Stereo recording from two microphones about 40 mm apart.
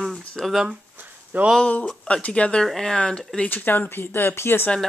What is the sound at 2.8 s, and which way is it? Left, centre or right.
Speech, centre.